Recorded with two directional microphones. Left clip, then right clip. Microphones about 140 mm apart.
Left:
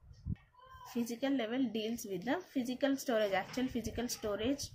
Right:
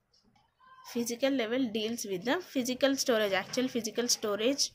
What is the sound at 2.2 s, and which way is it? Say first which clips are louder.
Speech: right 6 dB; 35° right (ahead or behind).